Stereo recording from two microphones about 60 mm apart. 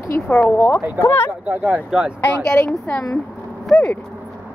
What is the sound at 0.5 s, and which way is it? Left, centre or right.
Speech, left.